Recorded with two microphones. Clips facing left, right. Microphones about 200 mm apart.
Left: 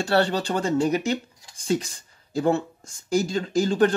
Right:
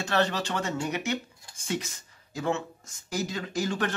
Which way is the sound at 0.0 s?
30° left (ahead or behind).